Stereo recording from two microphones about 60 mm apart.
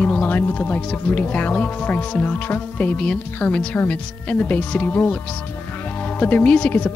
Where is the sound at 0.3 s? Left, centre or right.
Left.